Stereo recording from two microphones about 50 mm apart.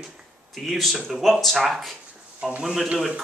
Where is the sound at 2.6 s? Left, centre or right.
Centre.